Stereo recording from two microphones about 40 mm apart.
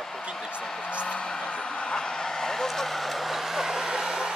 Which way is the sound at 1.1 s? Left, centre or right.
Left.